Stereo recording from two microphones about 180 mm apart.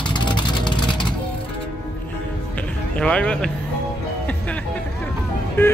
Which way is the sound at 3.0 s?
5° left (ahead or behind).